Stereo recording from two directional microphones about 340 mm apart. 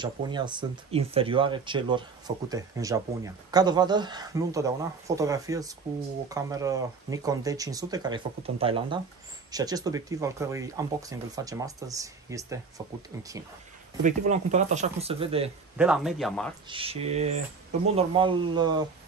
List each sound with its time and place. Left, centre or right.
0.0 s speech: centre
14.0 s speech: right
15.8 s speech: centre
16.6 s speech: centre